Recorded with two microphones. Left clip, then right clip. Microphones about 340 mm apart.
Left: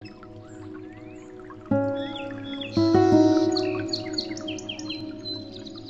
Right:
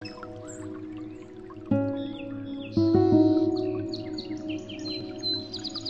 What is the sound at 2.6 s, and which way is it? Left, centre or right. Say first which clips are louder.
Chirp: left 3 dB; left.